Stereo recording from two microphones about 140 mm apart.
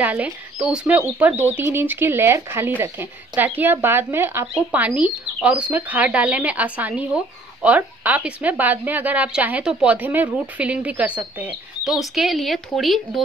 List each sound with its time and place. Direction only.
0.0 s a woman's voice: 10° right (ahead or behind)